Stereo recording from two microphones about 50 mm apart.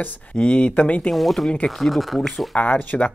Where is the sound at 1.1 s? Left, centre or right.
Centre.